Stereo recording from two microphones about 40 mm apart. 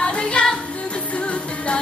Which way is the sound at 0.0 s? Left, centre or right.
Left.